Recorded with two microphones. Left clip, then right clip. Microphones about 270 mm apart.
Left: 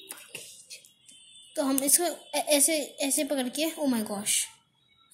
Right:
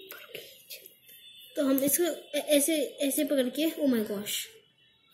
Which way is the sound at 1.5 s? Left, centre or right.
Left.